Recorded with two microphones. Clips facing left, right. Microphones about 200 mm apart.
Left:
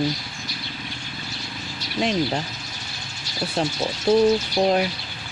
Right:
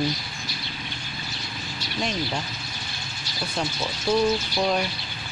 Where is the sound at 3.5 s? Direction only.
35° left (ahead or behind).